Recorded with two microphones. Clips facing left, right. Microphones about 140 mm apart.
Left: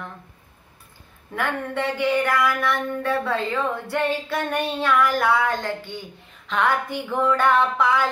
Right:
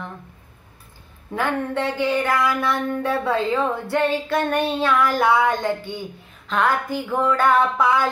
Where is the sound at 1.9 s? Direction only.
25° right (ahead or behind).